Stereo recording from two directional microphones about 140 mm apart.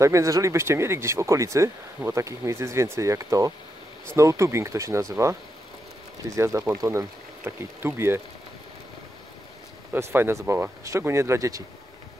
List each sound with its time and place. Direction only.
0.0 s speech: 20° right (ahead or behind)
9.9 s speech: 20° right (ahead or behind)